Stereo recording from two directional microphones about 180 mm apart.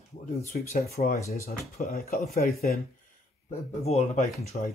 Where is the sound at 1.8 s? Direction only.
55° left (ahead or behind).